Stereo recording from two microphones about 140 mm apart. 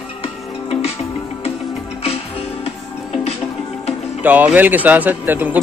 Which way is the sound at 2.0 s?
45° left (ahead or behind).